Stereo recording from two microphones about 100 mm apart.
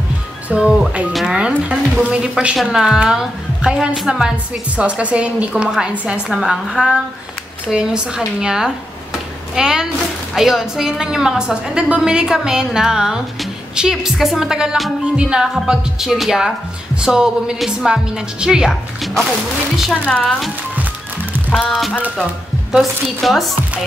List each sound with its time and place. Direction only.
0.5 s a woman's voice: 10° right (ahead or behind)
19.9 s a woman's voice: 10° left (ahead or behind)
21.5 s a woman's voice: centre (ahead or behind)